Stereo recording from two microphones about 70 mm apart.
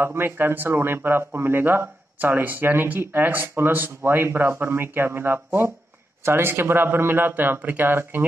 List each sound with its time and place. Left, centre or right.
0.0 s speech: right